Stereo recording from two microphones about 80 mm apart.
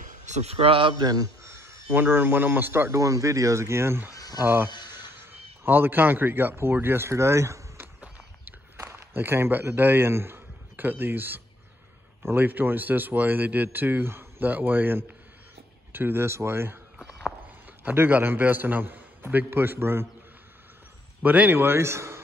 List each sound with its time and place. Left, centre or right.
0.7 s a man's voice: right
1.0 s a man's voice: right
1.4 s a man's voice: right
3.0 s speech: right
4.1 s a sound: left
4.9 s a sound: right
8.7 s a man's voice: right
17.8 s speech: right
21.2 s speech: right